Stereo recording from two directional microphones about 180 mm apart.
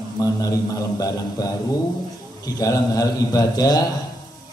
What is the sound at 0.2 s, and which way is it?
A man's voice, 20° left (ahead or behind).